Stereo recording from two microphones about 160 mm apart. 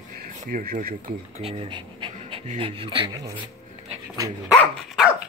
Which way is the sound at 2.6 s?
35° right (ahead or behind).